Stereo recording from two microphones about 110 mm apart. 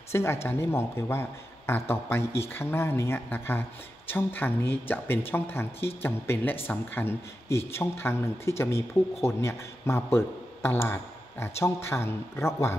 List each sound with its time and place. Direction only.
0.1 s speech: 25° left (ahead or behind)